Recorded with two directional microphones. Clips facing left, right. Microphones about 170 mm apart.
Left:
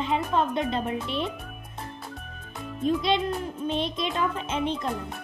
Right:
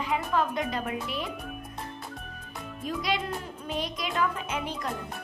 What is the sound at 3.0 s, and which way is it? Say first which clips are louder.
A child's voice: left 5 dB; 25° left (ahead or behind).